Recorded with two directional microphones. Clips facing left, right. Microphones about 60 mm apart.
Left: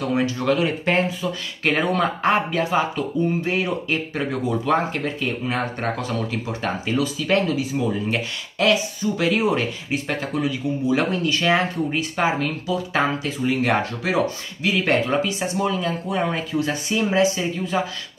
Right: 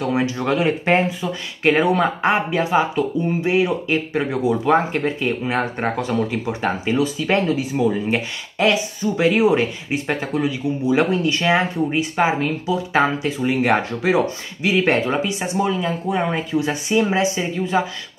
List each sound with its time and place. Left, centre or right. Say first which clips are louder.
0.1 s speech: left 1 dB; right